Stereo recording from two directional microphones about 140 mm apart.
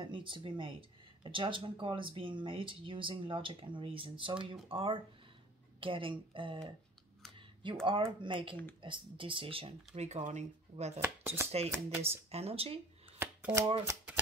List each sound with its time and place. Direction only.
0.0 s speech: 35° right (ahead or behind)
7.8 s speech: 35° right (ahead or behind); by 11.0 s 55° right (ahead or behind)
11.0 s chopping: 15° right (ahead or behind)
12.3 s speech: 45° right (ahead or behind)
13.2 s shuffling cards: 15° right (ahead or behind)
13.8 s typewriter: 15° right (ahead or behind)